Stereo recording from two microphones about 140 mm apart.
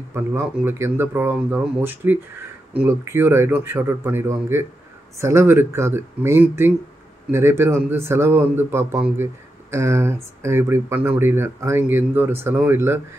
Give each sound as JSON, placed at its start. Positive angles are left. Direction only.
{"t": 0.1, "sound": "speech", "side_deg": -15}